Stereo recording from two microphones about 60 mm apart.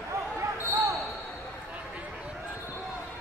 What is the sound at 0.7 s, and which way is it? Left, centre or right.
Basketball bounce, right.